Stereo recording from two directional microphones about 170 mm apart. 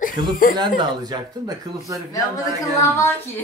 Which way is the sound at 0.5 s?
25° right (ahead or behind).